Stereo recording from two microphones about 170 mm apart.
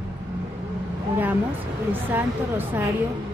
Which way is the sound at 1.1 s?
10° right (ahead or behind).